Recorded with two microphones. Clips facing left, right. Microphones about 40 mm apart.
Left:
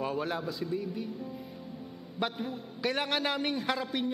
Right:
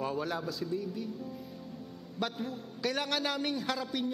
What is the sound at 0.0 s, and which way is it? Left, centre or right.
A man's voice, centre.